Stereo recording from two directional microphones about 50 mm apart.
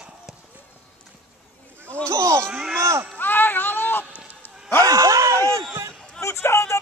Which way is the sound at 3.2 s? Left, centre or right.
Left.